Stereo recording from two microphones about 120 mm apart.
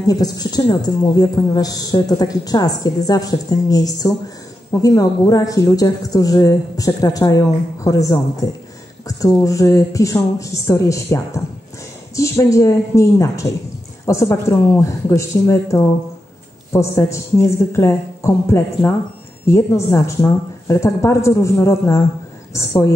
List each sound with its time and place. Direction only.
0.0 s a woman's voice: 30° left (ahead or behind)